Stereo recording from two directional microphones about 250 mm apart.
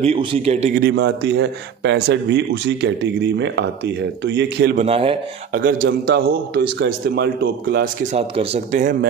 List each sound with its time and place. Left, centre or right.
0.0 s a man's voice: right
0.8 s speech: right
4.7 s a man's voice: right
5.5 s a man's voice: right
7.7 s a man's voice: right